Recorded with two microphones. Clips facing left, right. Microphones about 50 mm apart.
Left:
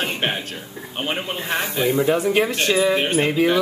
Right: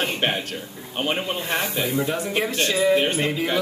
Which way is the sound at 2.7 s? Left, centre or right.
Left.